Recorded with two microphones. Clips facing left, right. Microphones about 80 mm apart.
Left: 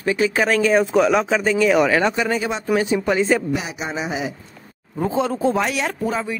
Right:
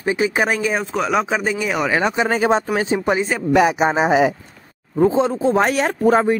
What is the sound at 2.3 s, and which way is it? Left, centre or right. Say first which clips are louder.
Speech: right 3 dB; right.